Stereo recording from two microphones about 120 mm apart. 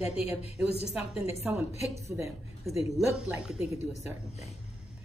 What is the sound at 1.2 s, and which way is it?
Speech, 20° right (ahead or behind).